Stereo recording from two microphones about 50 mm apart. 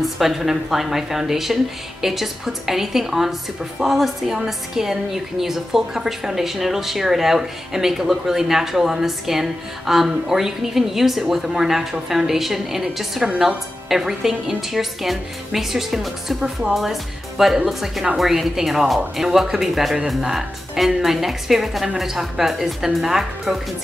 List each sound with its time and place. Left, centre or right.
0.0 s a woman's voice: centre